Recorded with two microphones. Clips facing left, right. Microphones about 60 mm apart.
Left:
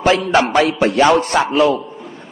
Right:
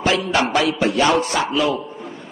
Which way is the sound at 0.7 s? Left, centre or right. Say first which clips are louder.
Left 4 dB; left.